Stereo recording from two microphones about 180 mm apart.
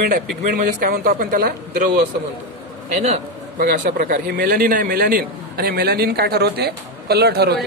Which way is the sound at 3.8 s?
55° right (ahead or behind).